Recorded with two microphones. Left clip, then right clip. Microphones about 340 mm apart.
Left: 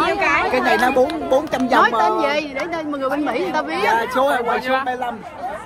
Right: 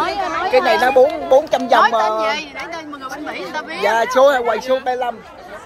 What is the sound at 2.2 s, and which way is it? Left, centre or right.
Speech, centre.